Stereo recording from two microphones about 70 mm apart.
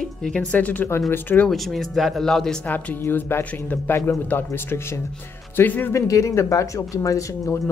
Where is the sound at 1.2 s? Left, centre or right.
Left.